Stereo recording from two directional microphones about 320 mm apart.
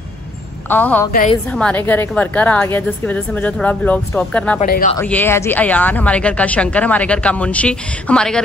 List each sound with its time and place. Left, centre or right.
0.7 s speech: centre
1.1 s speech: left
1.5 s speech: centre
4.6 s speech: left
4.9 s speech: centre